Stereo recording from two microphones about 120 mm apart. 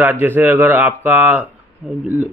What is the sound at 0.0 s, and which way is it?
Speech, 15° right (ahead or behind).